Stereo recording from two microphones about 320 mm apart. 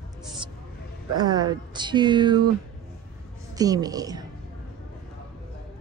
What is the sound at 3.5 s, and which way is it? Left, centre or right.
Speech, centre.